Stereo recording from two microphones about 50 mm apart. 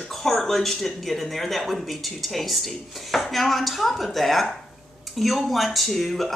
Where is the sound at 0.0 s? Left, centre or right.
Centre.